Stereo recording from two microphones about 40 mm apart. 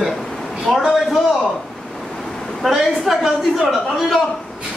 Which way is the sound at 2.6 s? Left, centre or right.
Centre.